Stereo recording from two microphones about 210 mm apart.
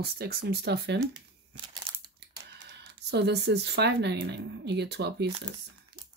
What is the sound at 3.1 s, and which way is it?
Speech, 50° right (ahead or behind).